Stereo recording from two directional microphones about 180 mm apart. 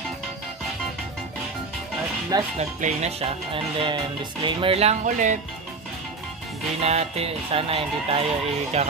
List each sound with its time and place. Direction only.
2.3 s speech: 20° right (ahead or behind)
2.8 s speech: 35° right (ahead or behind)
6.8 s speech: 35° right (ahead or behind)